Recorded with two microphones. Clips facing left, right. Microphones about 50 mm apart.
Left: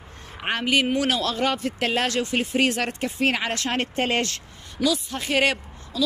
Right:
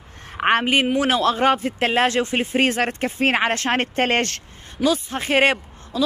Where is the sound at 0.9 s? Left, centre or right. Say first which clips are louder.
Right 5 dB; right.